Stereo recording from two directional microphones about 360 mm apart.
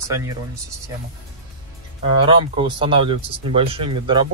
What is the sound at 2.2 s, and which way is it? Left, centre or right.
Speech, centre.